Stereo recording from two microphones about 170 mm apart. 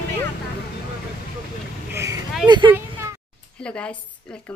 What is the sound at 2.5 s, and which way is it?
Speech, 25° right (ahead or behind).